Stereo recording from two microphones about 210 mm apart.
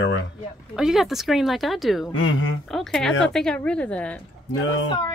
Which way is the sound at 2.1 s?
70° left (ahead or behind).